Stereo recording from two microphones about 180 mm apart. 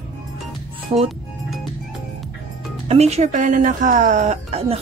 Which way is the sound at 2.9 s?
35° right (ahead or behind).